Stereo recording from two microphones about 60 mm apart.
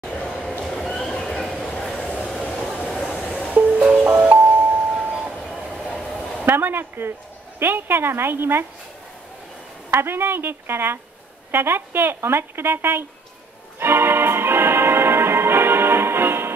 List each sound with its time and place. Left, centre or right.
0.3 s a sound: centre
1.7 s a sound: centre
2.5 s train: centre
3.2 s music: centre
3.5 s music: right
5.5 s train: centre
5.9 s a sound: centre
6.4 s speech: right
9.8 s a woman's voice: right
13.7 s organ: right